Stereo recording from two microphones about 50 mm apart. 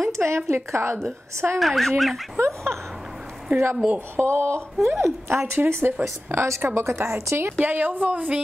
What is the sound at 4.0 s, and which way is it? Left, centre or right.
Speech, right.